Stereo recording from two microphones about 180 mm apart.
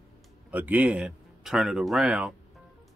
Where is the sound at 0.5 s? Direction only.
10° right (ahead or behind).